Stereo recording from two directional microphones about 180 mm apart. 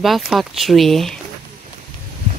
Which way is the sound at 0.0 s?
Centre (ahead or behind).